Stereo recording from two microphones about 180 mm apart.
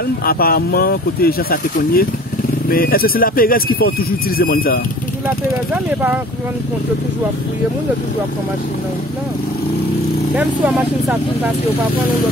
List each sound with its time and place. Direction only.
0.2 s speech: 55° left (ahead or behind)
10.3 s speech: 5° right (ahead or behind)